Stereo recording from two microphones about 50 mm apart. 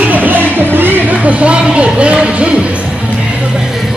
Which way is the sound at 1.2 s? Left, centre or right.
Right.